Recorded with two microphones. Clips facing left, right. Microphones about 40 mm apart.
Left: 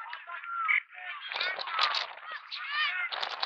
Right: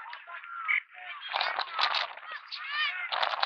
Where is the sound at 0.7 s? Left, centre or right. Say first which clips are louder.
Left 1 dB; centre.